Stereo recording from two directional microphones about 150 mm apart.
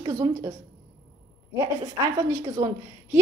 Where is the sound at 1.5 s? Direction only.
20° right (ahead or behind).